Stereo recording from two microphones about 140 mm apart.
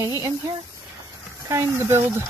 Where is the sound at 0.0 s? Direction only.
20° right (ahead or behind).